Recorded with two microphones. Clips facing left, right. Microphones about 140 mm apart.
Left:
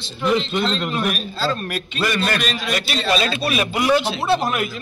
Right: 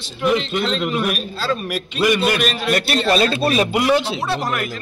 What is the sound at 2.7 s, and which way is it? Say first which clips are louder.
Speech: right 3 dB; 50° right (ahead or behind).